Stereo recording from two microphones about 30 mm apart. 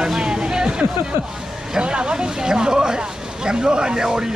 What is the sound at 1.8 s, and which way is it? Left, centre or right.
Speech, right.